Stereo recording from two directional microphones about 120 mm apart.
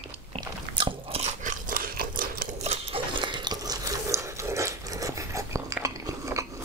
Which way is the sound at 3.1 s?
40° right (ahead or behind).